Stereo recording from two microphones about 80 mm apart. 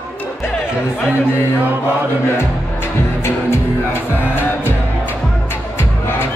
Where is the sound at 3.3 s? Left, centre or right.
Left.